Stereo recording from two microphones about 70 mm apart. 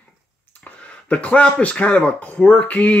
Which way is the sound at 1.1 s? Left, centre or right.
Centre.